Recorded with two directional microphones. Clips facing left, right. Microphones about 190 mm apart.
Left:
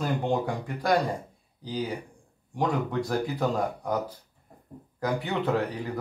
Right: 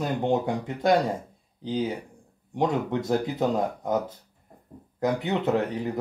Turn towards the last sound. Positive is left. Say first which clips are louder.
# right 2 dB
turn(degrees=-20)  # may be behind; listen again after turning